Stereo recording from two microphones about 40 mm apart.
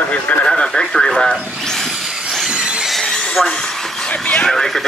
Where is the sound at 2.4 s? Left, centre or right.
Right.